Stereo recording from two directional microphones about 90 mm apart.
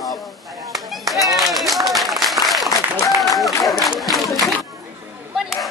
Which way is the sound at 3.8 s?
Centre (ahead or behind).